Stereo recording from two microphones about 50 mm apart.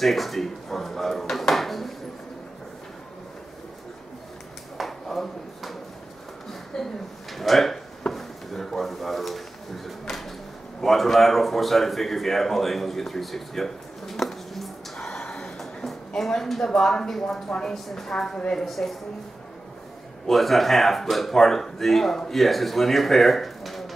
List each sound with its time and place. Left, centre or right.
0.0 s dishes: centre
4.7 s a sound: centre
7.3 s speech: centre
9.8 s a sound: centre
10.8 s speech: centre
15.1 s a sound: centre
16.2 s speech: centre
17.8 s speech: centre
20.2 s speech: centre